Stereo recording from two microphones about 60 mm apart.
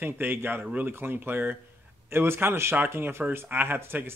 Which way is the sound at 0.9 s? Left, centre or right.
Right.